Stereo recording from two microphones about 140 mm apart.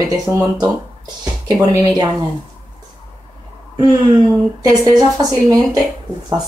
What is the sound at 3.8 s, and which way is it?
A woman's voice, 25° right (ahead or behind).